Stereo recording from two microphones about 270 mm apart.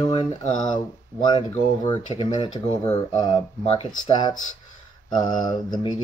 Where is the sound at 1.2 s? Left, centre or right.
Centre.